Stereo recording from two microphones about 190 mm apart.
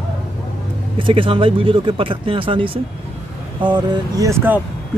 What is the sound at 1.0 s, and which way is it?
Speech, 30° right (ahead or behind).